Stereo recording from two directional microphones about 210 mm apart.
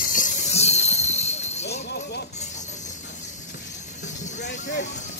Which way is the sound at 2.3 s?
35° left (ahead or behind).